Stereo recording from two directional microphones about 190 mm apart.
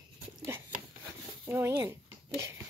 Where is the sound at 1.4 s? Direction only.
15° right (ahead or behind).